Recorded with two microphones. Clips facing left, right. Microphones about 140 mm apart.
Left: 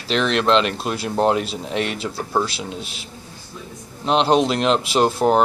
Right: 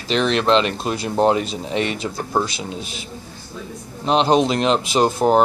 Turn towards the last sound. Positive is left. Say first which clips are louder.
# right 1 dB
turn(degrees=0)  # may be behind; listen again after turning